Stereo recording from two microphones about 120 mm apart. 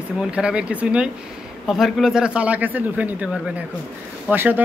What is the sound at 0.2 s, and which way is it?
Speech, 10° right (ahead or behind).